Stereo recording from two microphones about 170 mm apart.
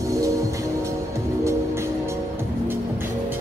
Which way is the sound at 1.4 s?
15° right (ahead or behind).